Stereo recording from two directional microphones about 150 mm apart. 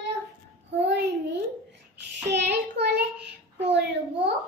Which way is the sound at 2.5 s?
90° right.